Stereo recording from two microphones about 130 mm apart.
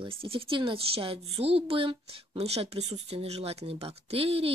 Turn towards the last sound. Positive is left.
turn(degrees=-50)  # may be behind; listen again after turning